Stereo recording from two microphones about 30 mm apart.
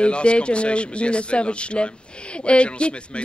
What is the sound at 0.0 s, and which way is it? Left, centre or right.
A man's voice, left.